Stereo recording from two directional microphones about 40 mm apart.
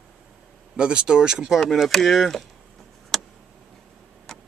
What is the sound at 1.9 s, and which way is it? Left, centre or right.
Speech, centre.